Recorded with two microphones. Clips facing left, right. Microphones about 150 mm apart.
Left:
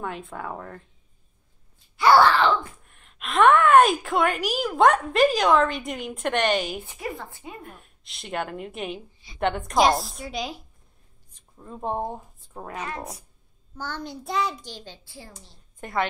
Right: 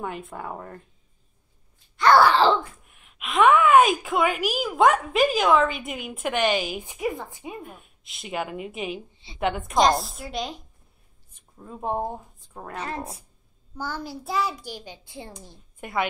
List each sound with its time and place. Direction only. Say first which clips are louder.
0.0 s a woman's voice: even; 5° right (ahead or behind)
2.0 s groan: even; 5° left (ahead or behind)
2.3 s a sound: right 2 dB; 35° right (ahead or behind)
2.8 s a woman's voice: even; 5° right (ahead or behind)
6.8 s a child's voice: right 5 dB; 15° right (ahead or behind)
7.6 s a woman's voice: right 2 dB; centre (ahead or behind)
12.8 s speech: right 4 dB; 30° right (ahead or behind)
13.7 s a child's voice: right 1 dB; 10° right (ahead or behind)
15.8 s a child's voice: even; 10° right (ahead or behind)